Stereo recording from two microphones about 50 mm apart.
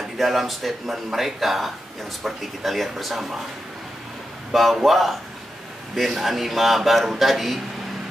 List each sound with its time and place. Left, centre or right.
0.2 s a man's voice: centre
4.7 s a man's voice: centre